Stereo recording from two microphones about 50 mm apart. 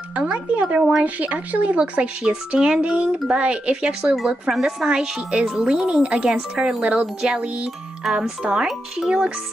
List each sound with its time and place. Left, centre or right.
0.1 s music: right
1.0 s speech: right
4.3 s speech: centre